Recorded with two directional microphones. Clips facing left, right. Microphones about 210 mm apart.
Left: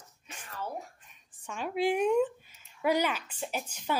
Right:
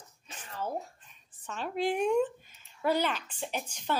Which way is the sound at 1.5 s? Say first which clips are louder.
Left 2 dB; 10° left (ahead or behind).